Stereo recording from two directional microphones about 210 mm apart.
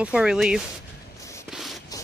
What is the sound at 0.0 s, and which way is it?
Speech, 5° right (ahead or behind).